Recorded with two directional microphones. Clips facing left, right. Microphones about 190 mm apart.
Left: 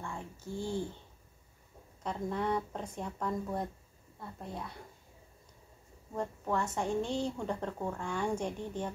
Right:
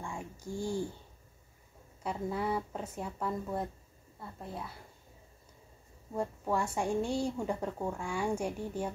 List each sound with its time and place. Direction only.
0.0 s a sound: 15° right (ahead or behind)
2.0 s speech: 5° right (ahead or behind)
6.1 s speech: 10° right (ahead or behind)